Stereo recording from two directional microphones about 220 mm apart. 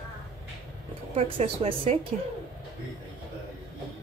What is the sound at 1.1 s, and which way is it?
Speech, 25° right (ahead or behind).